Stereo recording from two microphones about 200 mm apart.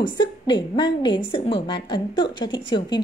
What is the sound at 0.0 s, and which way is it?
Speech, 25° left (ahead or behind).